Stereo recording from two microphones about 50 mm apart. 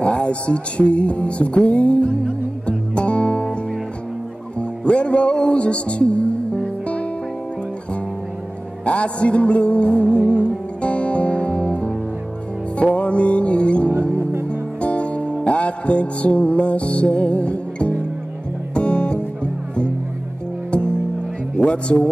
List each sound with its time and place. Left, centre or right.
0.0 s music: left
4.6 s music: left
8.8 s music: left